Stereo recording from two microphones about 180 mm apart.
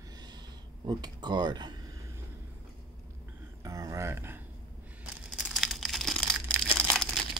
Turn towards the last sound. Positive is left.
turn(degrees=5)  # may be behind; listen again after turning